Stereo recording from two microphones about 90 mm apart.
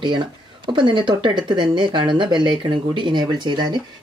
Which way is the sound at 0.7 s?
60° right (ahead or behind).